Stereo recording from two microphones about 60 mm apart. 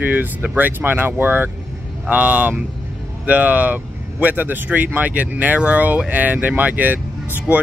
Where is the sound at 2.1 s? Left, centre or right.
Right.